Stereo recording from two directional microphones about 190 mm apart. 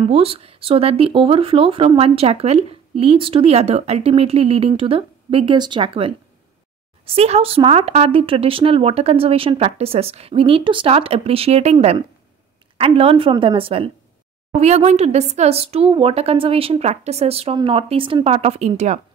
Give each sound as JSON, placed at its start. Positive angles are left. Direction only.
{"t": 0.1, "sound": "speech", "side_deg": -30}
{"t": 7.2, "sound": "speech", "side_deg": -30}